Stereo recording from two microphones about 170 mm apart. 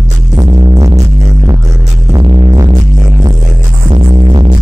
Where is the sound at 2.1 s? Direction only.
20° right (ahead or behind).